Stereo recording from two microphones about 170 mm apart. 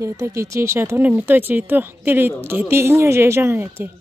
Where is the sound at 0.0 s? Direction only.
15° right (ahead or behind).